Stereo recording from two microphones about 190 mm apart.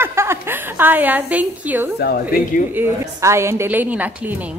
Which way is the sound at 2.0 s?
55° left (ahead or behind).